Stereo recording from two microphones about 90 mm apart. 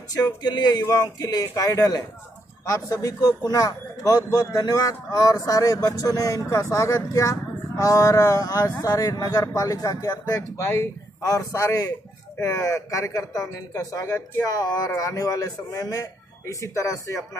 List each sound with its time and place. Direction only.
0.1 s speech: 50° left (ahead or behind)
10.6 s speech: 30° left (ahead or behind)